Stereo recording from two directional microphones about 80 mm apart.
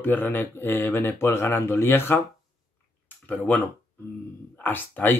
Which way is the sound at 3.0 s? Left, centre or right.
Left.